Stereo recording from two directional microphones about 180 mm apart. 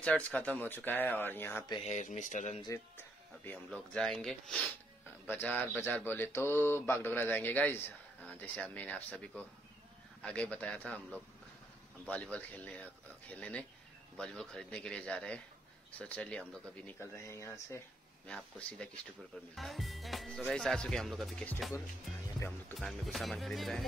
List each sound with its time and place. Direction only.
0.0 s speech: 5° left (ahead or behind)
1.9 s speech: 40° left (ahead or behind)
2.6 s speech: 15° left (ahead or behind)
22.8 s speech: centre (ahead or behind)